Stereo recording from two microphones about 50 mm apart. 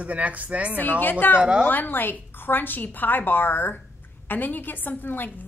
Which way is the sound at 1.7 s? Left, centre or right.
Left.